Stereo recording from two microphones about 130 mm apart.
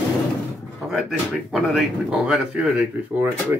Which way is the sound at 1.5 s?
5° right (ahead or behind).